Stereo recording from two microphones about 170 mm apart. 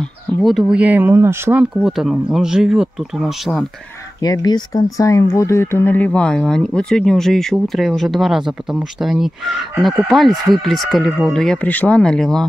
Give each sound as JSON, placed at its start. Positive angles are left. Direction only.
{"t": 0.4, "sound": "speech", "side_deg": 0}
{"t": 1.8, "sound": "speech", "side_deg": 0}
{"t": 4.2, "sound": "speech", "side_deg": 20}